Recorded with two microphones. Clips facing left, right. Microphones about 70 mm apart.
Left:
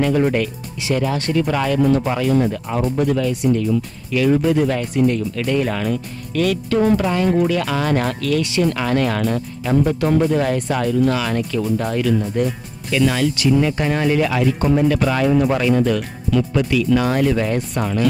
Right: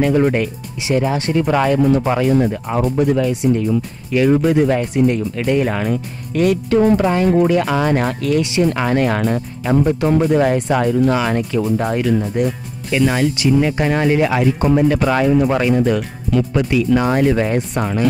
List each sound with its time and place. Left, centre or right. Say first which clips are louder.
0.0 s speech: right 2 dB; centre